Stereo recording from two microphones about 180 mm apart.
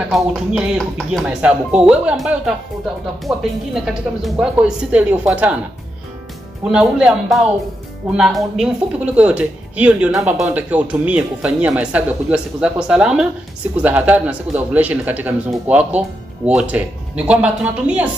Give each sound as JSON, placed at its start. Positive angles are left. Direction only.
{"t": 0.1, "sound": "speech", "side_deg": 0}
{"t": 6.6, "sound": "speech", "side_deg": -5}